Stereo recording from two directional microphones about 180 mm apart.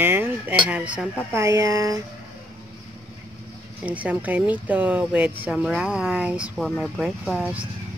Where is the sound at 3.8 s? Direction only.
10° right (ahead or behind).